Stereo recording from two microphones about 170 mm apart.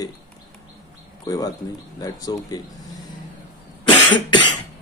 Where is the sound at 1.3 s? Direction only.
20° left (ahead or behind).